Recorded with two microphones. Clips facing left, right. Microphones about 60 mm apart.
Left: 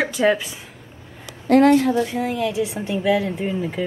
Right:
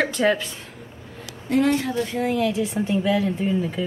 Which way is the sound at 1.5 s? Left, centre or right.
Left.